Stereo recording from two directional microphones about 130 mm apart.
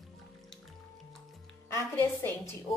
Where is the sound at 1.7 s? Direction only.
20° left (ahead or behind).